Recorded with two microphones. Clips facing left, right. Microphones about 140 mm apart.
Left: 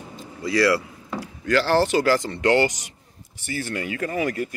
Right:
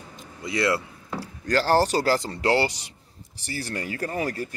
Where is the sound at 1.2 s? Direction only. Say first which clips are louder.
Left 2 dB; 40° right (ahead or behind).